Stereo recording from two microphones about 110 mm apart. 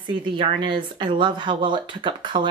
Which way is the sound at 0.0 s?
45° right (ahead or behind).